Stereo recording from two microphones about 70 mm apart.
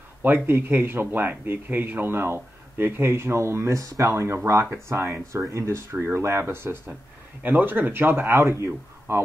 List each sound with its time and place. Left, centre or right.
0.2 s speech: right